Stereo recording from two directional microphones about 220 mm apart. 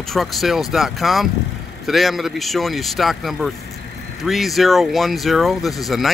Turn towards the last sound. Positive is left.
turn(degrees=0)  # may be behind; listen again after turning